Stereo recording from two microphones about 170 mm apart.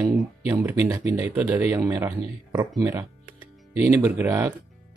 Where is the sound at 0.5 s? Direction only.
15° right (ahead or behind).